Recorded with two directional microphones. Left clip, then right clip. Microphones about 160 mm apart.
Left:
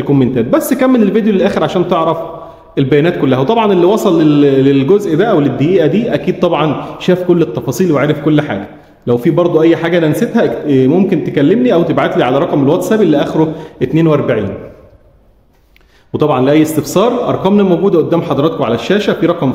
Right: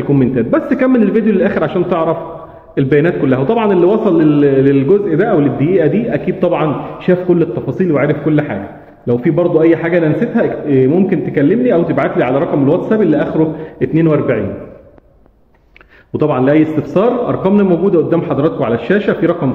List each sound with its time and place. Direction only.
0.1 s a man's voice: 25° left (ahead or behind)
16.1 s a man's voice: 25° left (ahead or behind)